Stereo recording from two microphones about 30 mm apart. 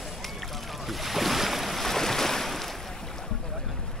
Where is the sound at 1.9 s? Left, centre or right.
Centre.